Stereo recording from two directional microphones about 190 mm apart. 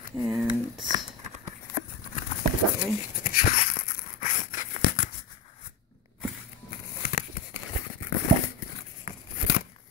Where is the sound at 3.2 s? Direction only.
50° left (ahead or behind).